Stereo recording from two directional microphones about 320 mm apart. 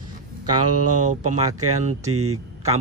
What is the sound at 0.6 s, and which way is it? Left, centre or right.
Speech, right.